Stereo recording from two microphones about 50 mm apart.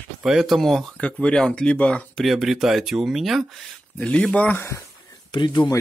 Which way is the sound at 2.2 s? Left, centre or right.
Centre.